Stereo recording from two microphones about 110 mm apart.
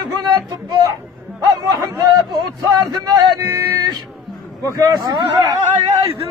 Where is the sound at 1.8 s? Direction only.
30° right (ahead or behind).